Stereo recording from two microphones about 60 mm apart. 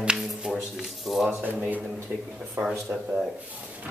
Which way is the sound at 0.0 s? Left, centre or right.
Centre.